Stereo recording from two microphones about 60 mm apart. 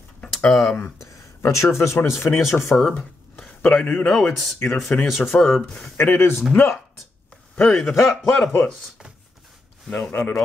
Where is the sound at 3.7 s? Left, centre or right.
Left.